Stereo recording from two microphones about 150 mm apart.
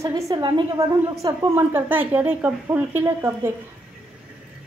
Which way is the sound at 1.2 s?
15° right (ahead or behind).